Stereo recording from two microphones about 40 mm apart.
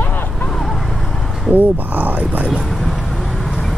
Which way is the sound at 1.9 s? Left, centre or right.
Right.